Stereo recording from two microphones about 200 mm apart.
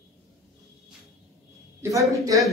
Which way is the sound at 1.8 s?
15° right (ahead or behind).